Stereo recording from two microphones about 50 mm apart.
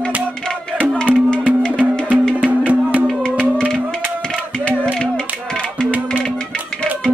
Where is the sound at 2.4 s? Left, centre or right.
Right.